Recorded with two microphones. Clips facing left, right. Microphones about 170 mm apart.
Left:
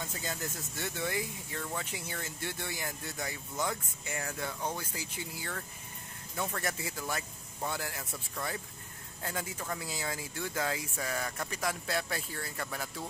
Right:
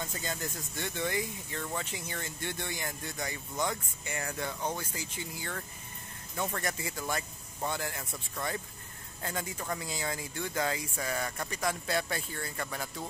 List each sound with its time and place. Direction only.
0.0 s speech: 5° left (ahead or behind)